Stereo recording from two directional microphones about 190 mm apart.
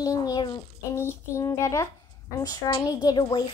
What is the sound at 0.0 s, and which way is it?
A woman's voice, 20° left (ahead or behind).